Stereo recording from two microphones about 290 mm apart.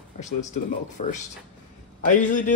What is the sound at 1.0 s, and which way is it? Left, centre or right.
Speech, left.